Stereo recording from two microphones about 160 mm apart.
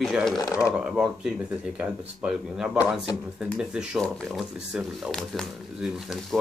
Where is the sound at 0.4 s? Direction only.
20° left (ahead or behind).